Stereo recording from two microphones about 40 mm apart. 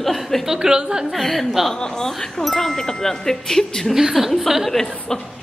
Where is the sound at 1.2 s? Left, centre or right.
Centre.